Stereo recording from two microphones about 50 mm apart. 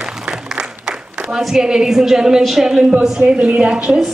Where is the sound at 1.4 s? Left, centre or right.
Centre.